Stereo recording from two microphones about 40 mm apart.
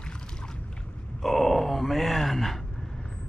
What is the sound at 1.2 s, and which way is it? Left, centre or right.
Groan, centre.